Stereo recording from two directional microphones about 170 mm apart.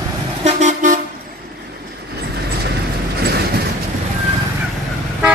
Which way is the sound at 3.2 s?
70° right (ahead or behind).